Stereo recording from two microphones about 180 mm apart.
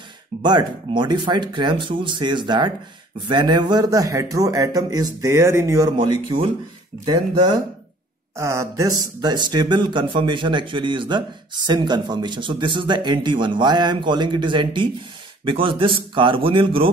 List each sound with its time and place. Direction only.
0.4 s speech: 25° right (ahead or behind)
8.4 s speech: 15° right (ahead or behind)